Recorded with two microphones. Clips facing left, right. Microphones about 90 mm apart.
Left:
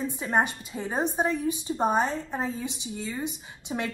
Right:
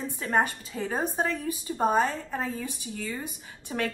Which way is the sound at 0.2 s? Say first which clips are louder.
Right 1 dB; 15° left (ahead or behind).